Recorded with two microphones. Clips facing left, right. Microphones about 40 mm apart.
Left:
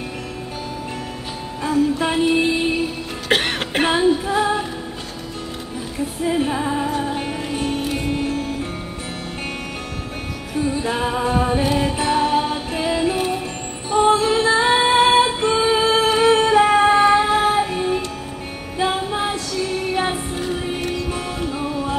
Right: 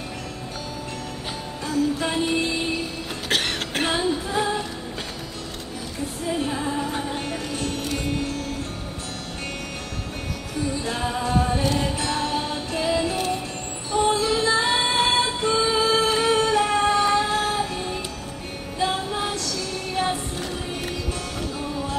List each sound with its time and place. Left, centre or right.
1.6 s music: left
6.2 s music: left
10.6 s music: left